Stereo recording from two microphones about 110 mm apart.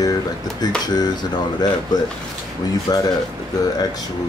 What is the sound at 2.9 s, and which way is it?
Speech, 35° left (ahead or behind).